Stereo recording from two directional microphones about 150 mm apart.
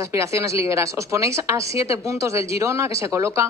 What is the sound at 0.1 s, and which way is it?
A woman's voice, 20° right (ahead or behind).